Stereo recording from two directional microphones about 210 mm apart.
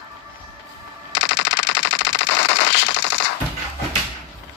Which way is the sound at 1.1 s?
55° left (ahead or behind).